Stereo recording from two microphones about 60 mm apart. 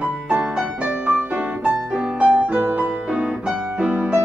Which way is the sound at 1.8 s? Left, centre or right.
Centre.